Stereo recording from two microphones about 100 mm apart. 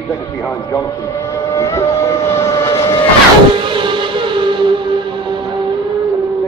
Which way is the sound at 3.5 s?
55° right (ahead or behind).